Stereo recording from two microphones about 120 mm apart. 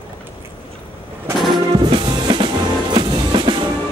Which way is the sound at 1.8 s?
40° right (ahead or behind).